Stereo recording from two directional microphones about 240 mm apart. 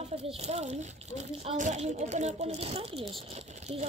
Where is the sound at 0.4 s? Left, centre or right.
Right.